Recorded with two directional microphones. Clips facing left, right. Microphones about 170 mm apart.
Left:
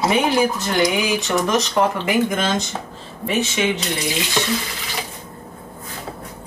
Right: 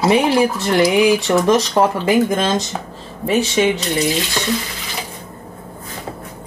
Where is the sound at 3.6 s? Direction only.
35° right (ahead or behind).